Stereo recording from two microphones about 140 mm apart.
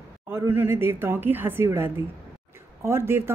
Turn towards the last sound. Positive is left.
turn(degrees=-15)  # may be behind; listen again after turning